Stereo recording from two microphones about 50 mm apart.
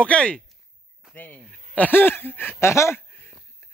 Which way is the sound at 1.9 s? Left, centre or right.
Left.